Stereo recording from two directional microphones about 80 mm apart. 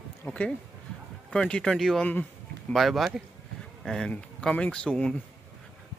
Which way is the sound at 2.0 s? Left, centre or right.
Centre.